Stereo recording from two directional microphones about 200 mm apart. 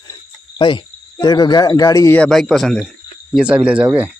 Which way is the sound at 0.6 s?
25° left (ahead or behind).